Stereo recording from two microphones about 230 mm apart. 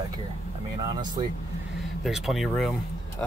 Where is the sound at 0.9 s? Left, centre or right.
Centre.